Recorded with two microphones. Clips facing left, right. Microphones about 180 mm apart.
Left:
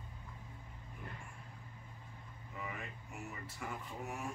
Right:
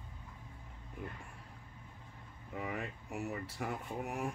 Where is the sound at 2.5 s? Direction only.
60° right (ahead or behind).